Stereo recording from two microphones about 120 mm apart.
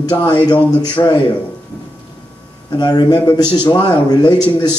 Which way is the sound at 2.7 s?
35° left (ahead or behind).